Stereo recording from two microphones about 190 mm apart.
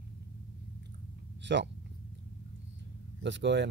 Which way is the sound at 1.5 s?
65° right (ahead or behind).